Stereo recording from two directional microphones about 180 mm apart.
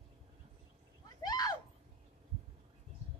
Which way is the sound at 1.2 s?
20° left (ahead or behind).